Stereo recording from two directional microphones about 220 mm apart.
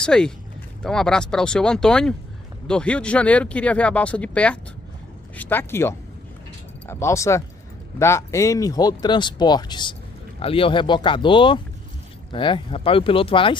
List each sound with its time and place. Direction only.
0.0 s speech: 5° left (ahead or behind); by 13.6 s 25° left (ahead or behind)